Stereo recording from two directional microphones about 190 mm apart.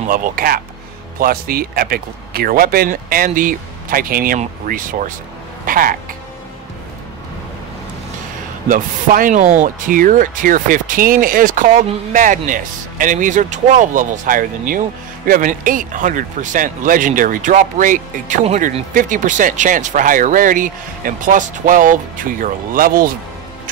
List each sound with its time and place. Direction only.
0.1 s speech: 50° right (ahead or behind)
8.6 s speech: 45° right (ahead or behind)